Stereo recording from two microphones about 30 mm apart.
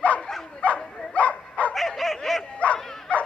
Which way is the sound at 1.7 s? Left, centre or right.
Centre.